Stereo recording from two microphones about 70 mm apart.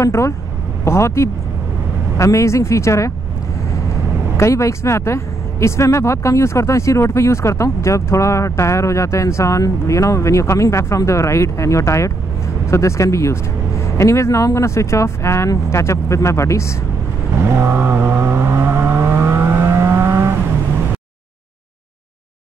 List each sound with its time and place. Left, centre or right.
0.0 s a woman's voice: left
4.4 s a woman's voice: left
17.4 s vehicle: right